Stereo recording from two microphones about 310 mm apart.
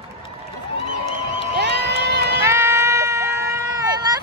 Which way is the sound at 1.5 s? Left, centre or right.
Right.